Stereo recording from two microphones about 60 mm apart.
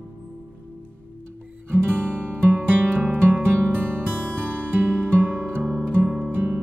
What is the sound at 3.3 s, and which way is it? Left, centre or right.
Music, right.